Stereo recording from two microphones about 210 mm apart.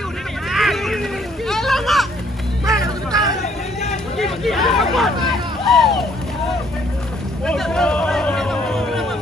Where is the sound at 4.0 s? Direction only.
Centre (ahead or behind).